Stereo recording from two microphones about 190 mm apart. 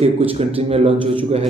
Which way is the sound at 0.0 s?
30° right (ahead or behind).